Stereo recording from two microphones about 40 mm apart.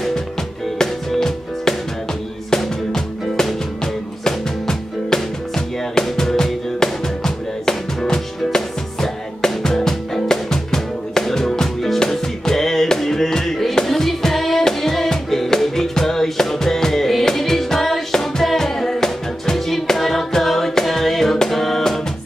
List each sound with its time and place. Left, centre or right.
0.7 s music: centre